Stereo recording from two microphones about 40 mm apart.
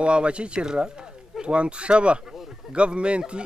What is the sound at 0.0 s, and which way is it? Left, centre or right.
Speech, right.